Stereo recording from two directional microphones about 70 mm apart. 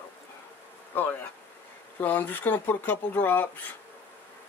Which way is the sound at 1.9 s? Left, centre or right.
Left.